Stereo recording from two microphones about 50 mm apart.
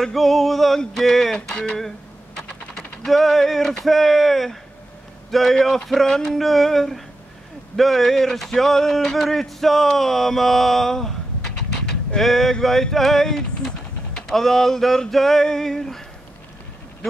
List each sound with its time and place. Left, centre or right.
0.0 s music: centre
7.7 s speech: centre
12.6 s music: centre
14.1 s male singing: centre